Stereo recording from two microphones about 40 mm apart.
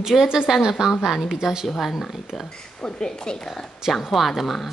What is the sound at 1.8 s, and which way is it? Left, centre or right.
Speech, centre.